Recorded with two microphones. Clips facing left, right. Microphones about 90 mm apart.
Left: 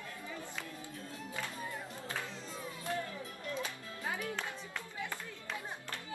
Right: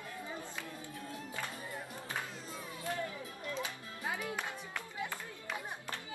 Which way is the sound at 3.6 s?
20° right (ahead or behind).